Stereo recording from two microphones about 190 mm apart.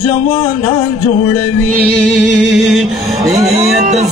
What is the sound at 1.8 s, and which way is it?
Music, centre (ahead or behind).